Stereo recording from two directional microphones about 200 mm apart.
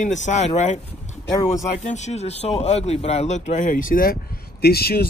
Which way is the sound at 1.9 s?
35° left (ahead or behind).